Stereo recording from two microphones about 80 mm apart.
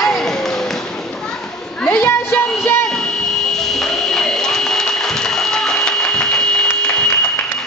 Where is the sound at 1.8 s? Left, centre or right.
Left.